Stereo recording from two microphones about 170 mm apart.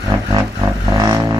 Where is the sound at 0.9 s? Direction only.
20° right (ahead or behind).